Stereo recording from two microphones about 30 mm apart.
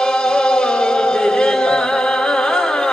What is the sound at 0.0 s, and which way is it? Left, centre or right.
Music, left.